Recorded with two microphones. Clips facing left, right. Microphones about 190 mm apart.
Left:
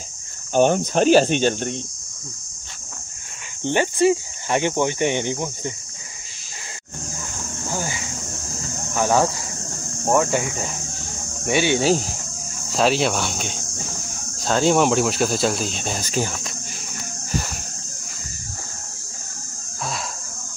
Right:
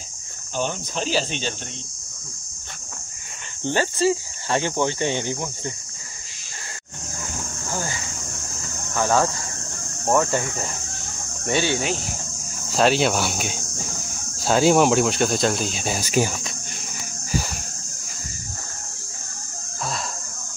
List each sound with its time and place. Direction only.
0.5 s speech: 55° left (ahead or behind)
3.6 s speech: 20° left (ahead or behind)
7.7 s a sound: 15° left (ahead or behind)
8.9 s speech: 15° left (ahead or behind)
12.6 s speech: centre (ahead or behind)